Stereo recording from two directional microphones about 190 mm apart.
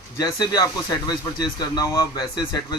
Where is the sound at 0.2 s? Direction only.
20° left (ahead or behind).